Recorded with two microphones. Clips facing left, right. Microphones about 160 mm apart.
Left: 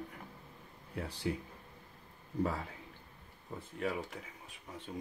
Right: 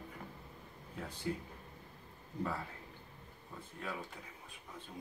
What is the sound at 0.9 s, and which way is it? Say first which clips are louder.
Speech: left 5 dB; 75° left (ahead or behind).